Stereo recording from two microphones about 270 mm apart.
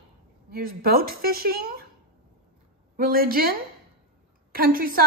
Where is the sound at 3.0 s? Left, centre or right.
Right.